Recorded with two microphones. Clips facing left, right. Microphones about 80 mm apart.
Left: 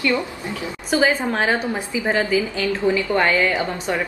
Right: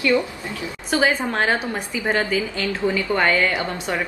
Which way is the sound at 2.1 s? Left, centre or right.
Centre.